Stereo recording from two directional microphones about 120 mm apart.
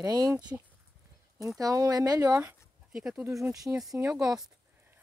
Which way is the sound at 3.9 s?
25° right (ahead or behind).